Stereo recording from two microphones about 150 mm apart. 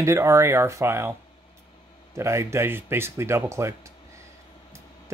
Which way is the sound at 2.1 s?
20° right (ahead or behind).